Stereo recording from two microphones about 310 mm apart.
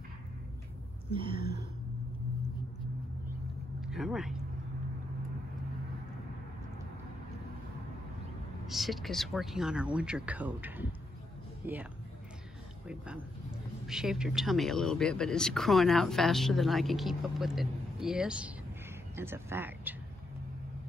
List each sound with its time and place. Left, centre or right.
1.1 s speech: centre
3.8 s a sound: centre
8.6 s speech: centre
12.8 s speech: centre